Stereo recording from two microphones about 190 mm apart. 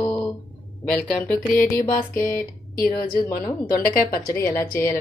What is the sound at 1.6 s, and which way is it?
Speech, 15° left (ahead or behind).